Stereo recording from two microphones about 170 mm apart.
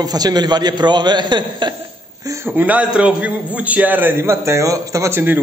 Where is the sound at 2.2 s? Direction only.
15° right (ahead or behind).